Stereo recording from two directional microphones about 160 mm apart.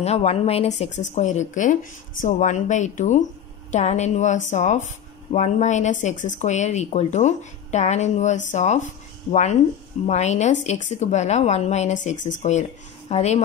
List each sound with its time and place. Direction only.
0.0 s speech: 40° left (ahead or behind)